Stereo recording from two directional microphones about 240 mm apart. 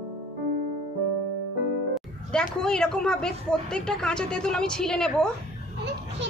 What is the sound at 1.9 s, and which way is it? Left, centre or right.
Music, centre.